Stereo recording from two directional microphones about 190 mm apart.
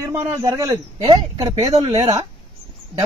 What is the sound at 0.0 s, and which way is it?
Speech, 15° right (ahead or behind).